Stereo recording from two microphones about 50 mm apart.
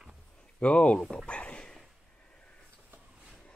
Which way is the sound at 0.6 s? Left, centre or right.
Left.